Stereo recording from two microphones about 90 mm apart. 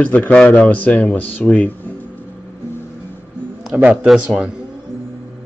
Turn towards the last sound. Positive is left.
turn(degrees=0)  # may be behind; listen again after turning